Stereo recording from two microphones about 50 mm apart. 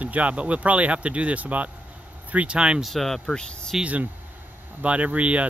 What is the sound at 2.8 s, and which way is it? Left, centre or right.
Speech, centre.